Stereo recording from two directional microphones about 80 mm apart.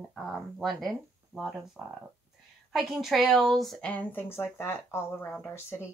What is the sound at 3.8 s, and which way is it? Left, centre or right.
Speech, centre.